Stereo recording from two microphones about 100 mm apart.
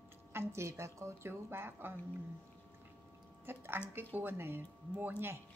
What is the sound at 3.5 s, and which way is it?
A woman's voice, 20° right (ahead or behind).